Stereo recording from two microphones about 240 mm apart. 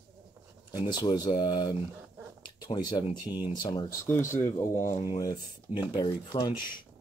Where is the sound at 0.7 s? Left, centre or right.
Centre.